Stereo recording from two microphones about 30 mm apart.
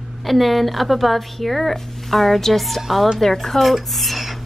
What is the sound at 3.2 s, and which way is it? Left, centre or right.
A woman's voice, centre.